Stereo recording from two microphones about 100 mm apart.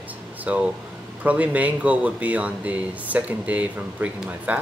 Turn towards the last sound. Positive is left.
turn(degrees=-15)  # may be behind; listen again after turning